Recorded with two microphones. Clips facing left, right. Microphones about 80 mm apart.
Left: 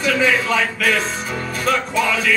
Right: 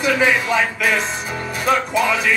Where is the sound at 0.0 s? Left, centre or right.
Centre.